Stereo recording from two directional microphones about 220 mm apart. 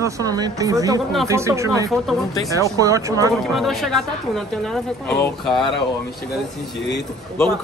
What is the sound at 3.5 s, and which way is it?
Speech, centre (ahead or behind).